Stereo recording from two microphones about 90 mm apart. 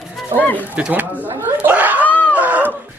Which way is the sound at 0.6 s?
15° right (ahead or behind).